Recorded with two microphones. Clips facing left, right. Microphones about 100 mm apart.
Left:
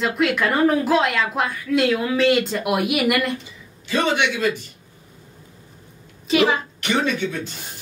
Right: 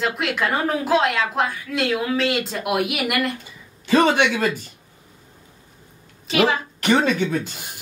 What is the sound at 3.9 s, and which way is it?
Speech, 40° right (ahead or behind).